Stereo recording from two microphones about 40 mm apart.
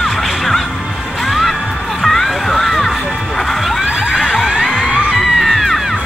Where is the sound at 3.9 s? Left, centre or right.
Centre.